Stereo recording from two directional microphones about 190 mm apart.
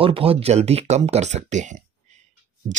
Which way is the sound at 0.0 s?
30° right (ahead or behind).